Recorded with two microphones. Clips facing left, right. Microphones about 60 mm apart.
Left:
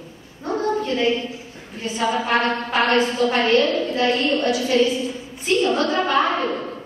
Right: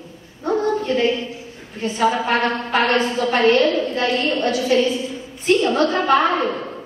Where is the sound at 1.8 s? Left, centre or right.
Right.